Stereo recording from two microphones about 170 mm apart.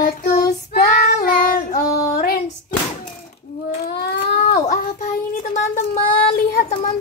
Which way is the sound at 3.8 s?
65° left (ahead or behind).